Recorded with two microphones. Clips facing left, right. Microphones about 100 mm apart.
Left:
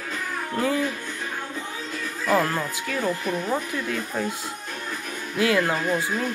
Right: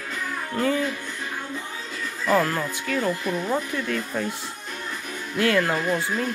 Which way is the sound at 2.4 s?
10° left (ahead or behind).